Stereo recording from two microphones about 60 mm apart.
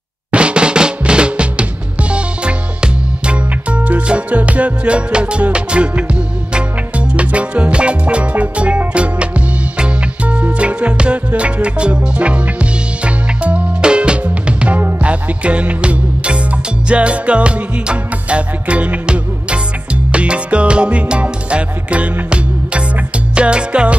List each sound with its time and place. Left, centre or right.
0.3 s music: centre